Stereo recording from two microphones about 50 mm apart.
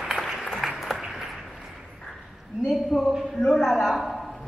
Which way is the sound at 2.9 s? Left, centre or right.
Centre.